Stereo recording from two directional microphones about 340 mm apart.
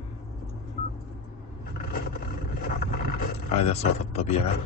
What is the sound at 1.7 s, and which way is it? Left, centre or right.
Vehicle, left.